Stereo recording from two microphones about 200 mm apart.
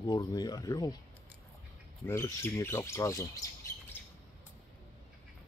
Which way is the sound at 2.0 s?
15° left (ahead or behind).